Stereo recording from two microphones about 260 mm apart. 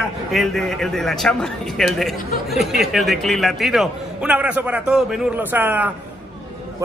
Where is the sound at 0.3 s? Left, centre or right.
Centre.